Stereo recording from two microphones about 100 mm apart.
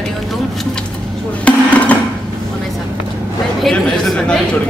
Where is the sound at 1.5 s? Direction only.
15° left (ahead or behind).